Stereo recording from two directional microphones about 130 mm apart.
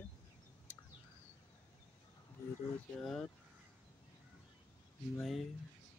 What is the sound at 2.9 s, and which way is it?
Speech, 5° left (ahead or behind).